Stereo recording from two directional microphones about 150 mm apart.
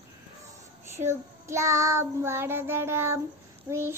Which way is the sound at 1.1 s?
20° right (ahead or behind).